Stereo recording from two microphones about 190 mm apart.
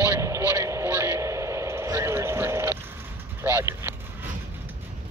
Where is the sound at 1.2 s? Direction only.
15° right (ahead or behind).